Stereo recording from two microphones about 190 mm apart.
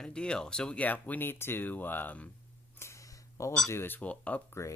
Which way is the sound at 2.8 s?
15° left (ahead or behind).